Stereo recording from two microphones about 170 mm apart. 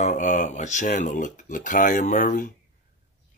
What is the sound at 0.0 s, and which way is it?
Speech, 45° left (ahead or behind).